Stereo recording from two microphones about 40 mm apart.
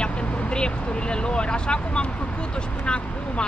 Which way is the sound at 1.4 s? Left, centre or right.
Left.